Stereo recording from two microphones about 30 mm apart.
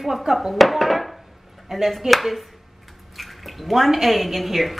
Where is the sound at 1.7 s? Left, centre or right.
Centre.